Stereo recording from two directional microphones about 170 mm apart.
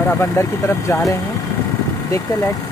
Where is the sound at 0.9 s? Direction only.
20° left (ahead or behind).